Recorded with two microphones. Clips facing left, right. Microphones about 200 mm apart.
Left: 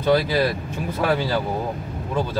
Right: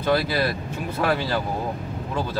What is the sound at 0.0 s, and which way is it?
Speech, 15° left (ahead or behind).